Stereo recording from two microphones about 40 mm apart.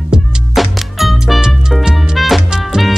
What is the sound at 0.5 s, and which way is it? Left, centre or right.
Music, centre.